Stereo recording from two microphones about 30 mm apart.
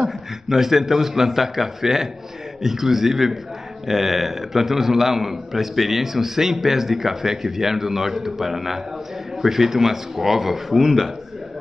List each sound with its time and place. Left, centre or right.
0.5 s a man's voice: centre